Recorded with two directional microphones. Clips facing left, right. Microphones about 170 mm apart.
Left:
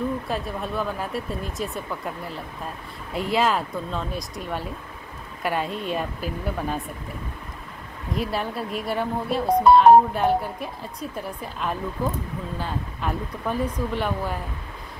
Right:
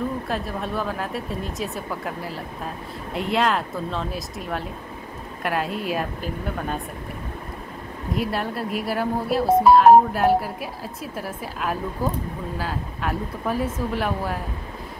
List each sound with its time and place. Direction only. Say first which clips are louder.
0.3 s speech: right 1 dB; centre (ahead or behind)
8.1 s speech: right 1 dB; centre (ahead or behind)